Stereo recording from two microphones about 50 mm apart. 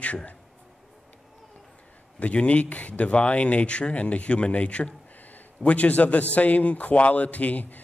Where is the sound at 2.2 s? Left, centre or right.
Left.